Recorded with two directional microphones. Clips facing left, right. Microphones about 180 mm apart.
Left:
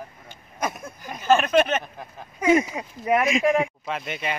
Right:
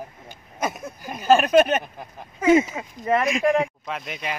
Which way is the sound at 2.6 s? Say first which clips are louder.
Even; 10° left (ahead or behind).